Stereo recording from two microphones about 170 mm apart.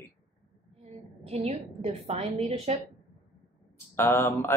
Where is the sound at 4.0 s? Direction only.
15° left (ahead or behind).